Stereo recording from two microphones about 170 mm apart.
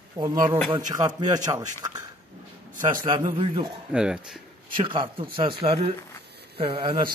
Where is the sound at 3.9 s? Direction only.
5° right (ahead or behind).